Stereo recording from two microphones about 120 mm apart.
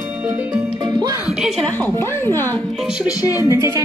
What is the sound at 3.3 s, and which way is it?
Speech, 20° right (ahead or behind).